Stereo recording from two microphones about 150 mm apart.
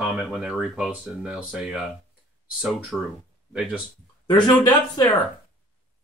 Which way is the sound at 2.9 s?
Centre (ahead or behind).